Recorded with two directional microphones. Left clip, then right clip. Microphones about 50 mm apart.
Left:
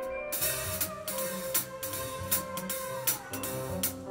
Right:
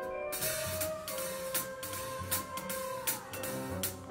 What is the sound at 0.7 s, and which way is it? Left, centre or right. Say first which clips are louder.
Music: left 1 dB; centre.